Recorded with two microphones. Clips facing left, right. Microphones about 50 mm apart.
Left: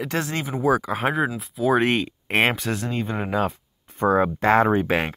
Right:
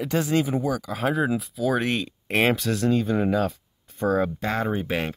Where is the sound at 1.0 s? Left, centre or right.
Left.